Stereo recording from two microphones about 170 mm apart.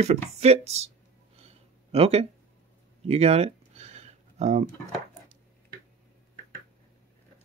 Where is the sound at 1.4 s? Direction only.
35° right (ahead or behind).